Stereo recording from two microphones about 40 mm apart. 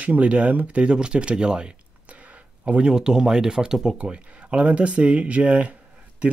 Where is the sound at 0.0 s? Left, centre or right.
Right.